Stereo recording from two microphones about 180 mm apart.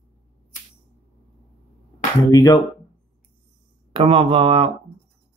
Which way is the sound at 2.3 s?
20° left (ahead or behind).